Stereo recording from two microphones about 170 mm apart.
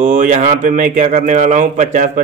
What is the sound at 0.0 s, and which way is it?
A man's voice, 45° right (ahead or behind).